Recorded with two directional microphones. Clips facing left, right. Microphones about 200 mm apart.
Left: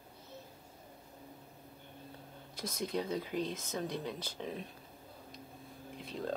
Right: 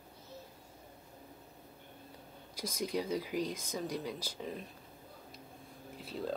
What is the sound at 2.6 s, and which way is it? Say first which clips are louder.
Speech: right 1 dB; 10° right (ahead or behind).